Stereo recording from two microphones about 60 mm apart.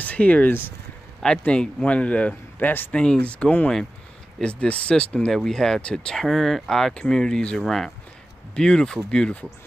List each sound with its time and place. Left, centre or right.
0.0 s speech: left
1.2 s speech: centre; by 2.9 s left
2.9 s speech: centre
6.1 s speech: centre